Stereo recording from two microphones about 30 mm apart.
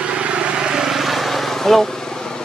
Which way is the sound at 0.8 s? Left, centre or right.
Centre.